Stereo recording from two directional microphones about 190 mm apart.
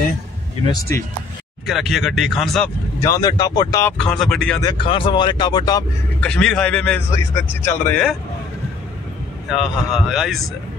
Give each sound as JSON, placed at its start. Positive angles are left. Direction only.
{"t": 0.7, "sound": "speech", "side_deg": 15}
{"t": 1.7, "sound": "speech", "side_deg": 0}
{"t": 3.0, "sound": "speech", "side_deg": 20}
{"t": 4.0, "sound": "speech", "side_deg": 5}
{"t": 4.6, "sound": "speech", "side_deg": 25}
{"t": 6.2, "sound": "speech", "side_deg": 5}
{"t": 9.5, "sound": "speech", "side_deg": 0}